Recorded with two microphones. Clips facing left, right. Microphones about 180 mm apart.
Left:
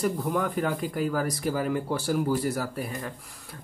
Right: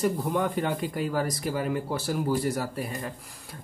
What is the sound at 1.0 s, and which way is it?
Speech, centre (ahead or behind).